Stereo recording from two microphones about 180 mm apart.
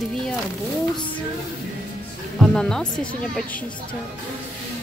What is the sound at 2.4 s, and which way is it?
Speech, 5° left (ahead or behind).